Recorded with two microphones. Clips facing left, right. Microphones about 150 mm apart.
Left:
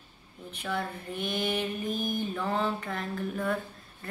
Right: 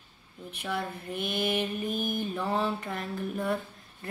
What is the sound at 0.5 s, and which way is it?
Mantra, 10° right (ahead or behind).